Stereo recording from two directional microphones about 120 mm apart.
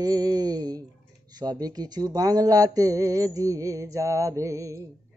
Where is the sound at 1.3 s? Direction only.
35° right (ahead or behind).